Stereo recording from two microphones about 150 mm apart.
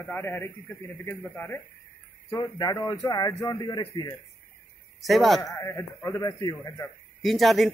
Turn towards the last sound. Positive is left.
turn(degrees=0)  # may be behind; listen again after turning